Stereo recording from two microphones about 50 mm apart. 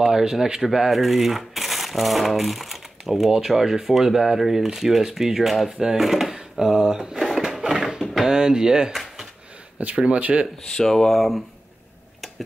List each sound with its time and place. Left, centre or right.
0.0 s speech: centre
5.7 s speech: centre
5.9 s speech: centre
6.5 s drawer open or close: centre
8.4 s speech: centre
8.9 s a sound: centre
9.8 s speech: right
10.8 s speech: centre